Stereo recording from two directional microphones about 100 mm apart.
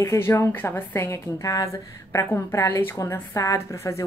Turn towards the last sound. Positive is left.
turn(degrees=30)  # may be behind; listen again after turning